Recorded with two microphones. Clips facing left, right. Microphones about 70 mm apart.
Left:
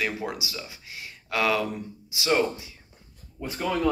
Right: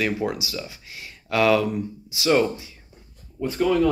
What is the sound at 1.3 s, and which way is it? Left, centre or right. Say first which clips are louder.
Speech: right 6 dB; centre.